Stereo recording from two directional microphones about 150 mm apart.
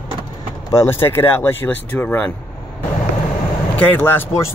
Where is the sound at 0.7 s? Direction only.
15° left (ahead or behind).